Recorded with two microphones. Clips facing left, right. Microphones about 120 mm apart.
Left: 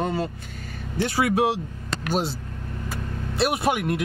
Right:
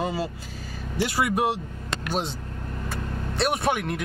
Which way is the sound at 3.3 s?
5° left (ahead or behind).